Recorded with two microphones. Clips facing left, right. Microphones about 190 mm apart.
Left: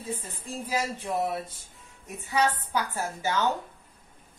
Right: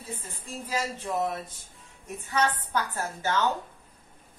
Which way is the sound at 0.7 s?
15° left (ahead or behind).